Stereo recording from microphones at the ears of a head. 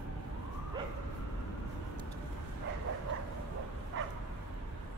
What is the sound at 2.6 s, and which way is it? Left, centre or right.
Bow-wow, right.